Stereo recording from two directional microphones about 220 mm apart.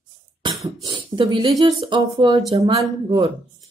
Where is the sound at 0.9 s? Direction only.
20° right (ahead or behind).